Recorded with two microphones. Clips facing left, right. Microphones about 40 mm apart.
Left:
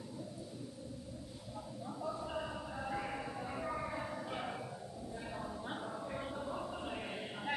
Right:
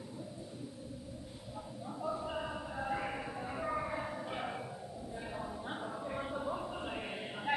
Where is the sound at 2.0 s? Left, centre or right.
Centre.